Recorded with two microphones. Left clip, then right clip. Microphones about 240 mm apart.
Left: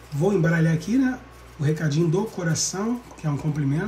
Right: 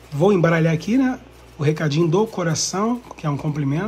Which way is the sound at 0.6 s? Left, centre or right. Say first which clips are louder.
Right 4 dB; centre.